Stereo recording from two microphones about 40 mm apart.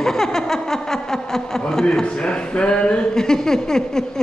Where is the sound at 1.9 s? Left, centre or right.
Left.